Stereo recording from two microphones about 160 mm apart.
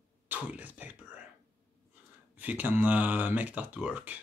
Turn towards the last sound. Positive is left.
turn(degrees=-10)  # may be behind; listen again after turning